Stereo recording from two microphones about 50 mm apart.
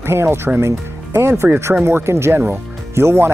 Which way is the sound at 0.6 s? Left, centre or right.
Right.